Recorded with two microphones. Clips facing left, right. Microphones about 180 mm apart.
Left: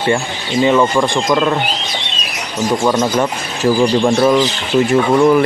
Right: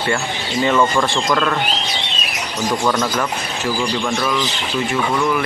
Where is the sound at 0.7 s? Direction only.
15° left (ahead or behind).